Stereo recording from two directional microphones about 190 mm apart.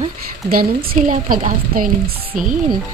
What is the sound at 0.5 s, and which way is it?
A woman's voice, 50° right (ahead or behind).